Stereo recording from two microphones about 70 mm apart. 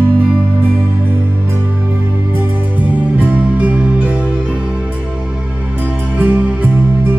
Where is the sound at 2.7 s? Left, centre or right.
Right.